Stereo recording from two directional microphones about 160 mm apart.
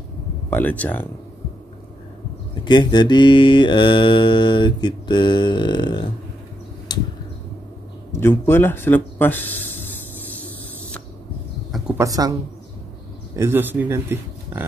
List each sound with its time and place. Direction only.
0.5 s speech: 10° left (ahead or behind)
2.6 s mantra: 30° left (ahead or behind)
6.9 s a sound: 25° left (ahead or behind)
8.1 s a sound: 15° left (ahead or behind)
12.0 s speech: 20° right (ahead or behind)
13.4 s speech: 15° right (ahead or behind)